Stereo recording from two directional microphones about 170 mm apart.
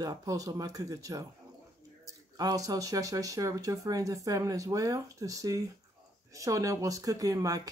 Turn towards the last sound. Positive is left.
turn(degrees=-20)  # may be behind; listen again after turning